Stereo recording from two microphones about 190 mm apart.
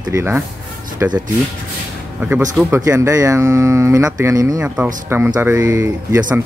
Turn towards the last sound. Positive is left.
turn(degrees=-15)  # may be behind; listen again after turning